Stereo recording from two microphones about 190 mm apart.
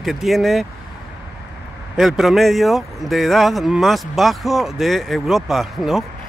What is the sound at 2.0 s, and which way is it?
Speech, centre (ahead or behind).